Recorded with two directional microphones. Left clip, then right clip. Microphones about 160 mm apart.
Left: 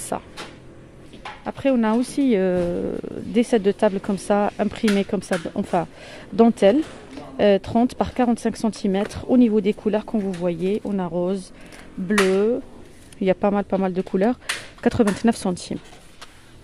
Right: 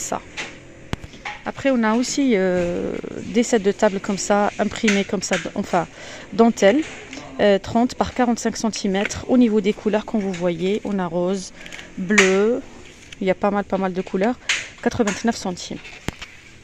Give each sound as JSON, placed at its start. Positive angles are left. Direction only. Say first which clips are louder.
{"t": 0.1, "sound": "speech", "louder": "even", "side_deg": 15}
{"t": 1.4, "sound": "speech", "louder": "right 1 dB", "side_deg": 10}
{"t": 13.2, "sound": "speech", "louder": "even", "side_deg": 15}